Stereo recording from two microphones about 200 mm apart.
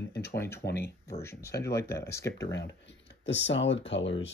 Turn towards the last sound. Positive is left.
turn(degrees=65)  # may be behind; listen again after turning